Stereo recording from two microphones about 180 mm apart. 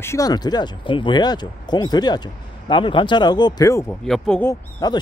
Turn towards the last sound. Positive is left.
turn(degrees=20)  # may be behind; listen again after turning